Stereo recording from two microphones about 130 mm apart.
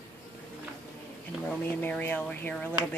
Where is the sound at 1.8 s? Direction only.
15° left (ahead or behind).